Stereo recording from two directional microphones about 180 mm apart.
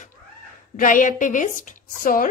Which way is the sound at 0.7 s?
45° left (ahead or behind).